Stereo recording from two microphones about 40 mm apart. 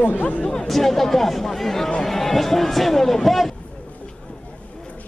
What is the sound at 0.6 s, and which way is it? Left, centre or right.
Speech, centre.